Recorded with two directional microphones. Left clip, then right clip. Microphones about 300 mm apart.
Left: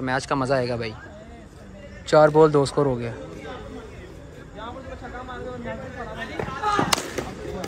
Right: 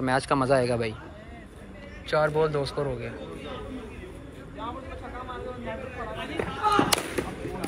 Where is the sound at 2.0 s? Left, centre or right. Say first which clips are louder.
Left 9 dB; centre.